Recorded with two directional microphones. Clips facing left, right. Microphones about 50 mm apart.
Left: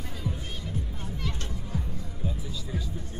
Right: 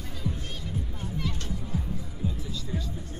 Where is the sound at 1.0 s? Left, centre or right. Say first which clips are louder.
Right 2 dB; centre.